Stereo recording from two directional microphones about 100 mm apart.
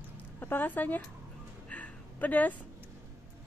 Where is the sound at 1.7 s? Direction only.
15° left (ahead or behind).